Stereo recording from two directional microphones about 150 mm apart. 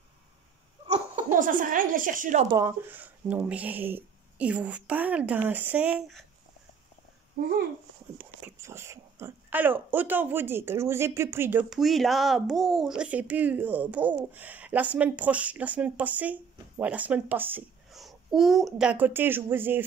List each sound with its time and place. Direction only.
0.8 s a sound: 40° right (ahead or behind)
1.3 s speech: 60° right (ahead or behind)
2.5 s speech: 15° right (ahead or behind)
8.2 s speech: 15° right (ahead or behind)
11.7 s speech: centre (ahead or behind)
17.9 s a child's voice: centre (ahead or behind)